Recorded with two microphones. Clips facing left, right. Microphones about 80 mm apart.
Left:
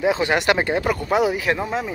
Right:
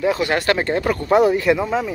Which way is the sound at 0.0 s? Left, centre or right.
Left.